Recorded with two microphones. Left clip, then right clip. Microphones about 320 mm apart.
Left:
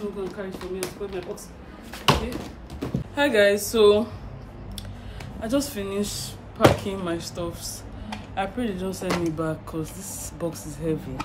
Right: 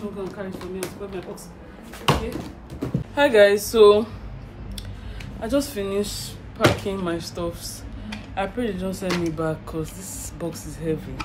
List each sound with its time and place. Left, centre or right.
0.2 s speech: centre
5.4 s speech: centre
9.0 s speech: left
9.4 s speech: centre